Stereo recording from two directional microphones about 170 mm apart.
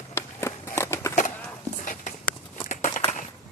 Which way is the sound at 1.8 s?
50° left (ahead or behind).